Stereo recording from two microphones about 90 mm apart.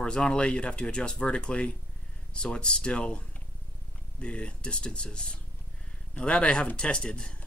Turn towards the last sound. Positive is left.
turn(degrees=10)  # may be behind; listen again after turning